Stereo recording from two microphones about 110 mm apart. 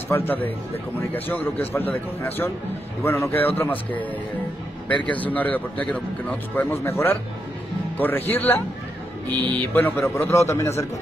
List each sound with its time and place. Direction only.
0.1 s a man's voice: 20° left (ahead or behind)